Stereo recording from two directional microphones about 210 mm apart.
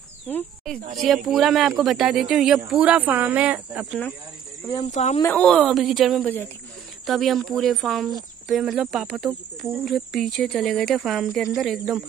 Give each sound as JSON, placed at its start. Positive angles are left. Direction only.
{"t": 0.3, "sound": "speech", "side_deg": 10}
{"t": 4.9, "sound": "speech", "side_deg": 35}
{"t": 5.2, "sound": "speech", "side_deg": 5}